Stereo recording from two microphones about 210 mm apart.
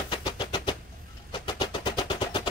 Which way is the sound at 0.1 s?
20° left (ahead or behind).